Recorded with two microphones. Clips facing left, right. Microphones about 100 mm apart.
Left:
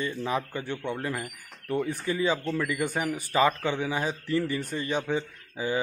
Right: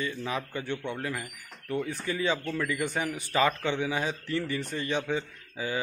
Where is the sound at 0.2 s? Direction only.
10° left (ahead or behind).